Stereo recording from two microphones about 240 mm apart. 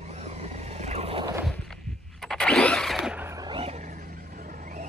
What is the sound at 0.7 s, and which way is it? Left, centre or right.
Vehicle, right.